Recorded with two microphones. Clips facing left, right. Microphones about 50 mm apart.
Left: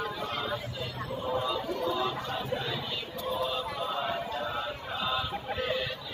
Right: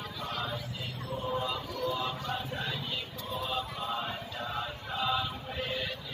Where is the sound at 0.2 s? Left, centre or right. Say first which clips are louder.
Left 3 dB; centre.